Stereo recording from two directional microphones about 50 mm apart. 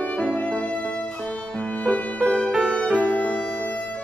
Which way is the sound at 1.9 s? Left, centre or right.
Left.